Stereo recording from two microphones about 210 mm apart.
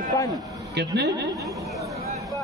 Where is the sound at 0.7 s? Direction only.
55° right (ahead or behind).